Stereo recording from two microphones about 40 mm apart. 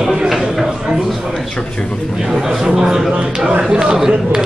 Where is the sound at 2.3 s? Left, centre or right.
Centre.